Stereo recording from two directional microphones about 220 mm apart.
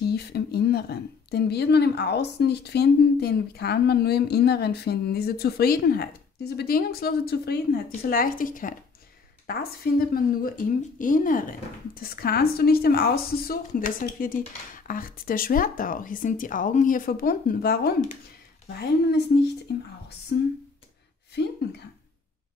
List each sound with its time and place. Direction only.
0.1 s a woman's voice: 45° left (ahead or behind)
21.4 s a woman's voice: 50° left (ahead or behind)